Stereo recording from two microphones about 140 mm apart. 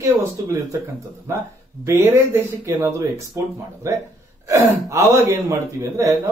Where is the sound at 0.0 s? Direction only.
20° right (ahead or behind).